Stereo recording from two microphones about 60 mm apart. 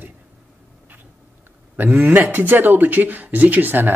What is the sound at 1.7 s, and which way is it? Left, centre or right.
A man's voice, right.